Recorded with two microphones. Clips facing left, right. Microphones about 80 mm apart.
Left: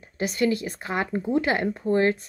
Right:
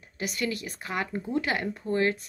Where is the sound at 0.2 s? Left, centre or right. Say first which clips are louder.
Left 7 dB; left.